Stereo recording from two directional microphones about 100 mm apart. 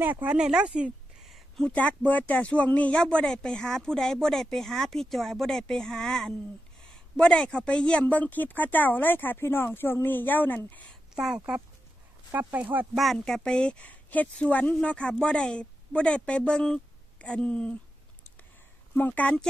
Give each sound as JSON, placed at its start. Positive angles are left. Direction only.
{"t": 0.0, "sound": "speech", "side_deg": -15}
{"t": 1.6, "sound": "a woman's voice", "side_deg": 15}
{"t": 11.1, "sound": "speech", "side_deg": -10}
{"t": 12.9, "sound": "speech", "side_deg": 0}
{"t": 18.9, "sound": "speech", "side_deg": 15}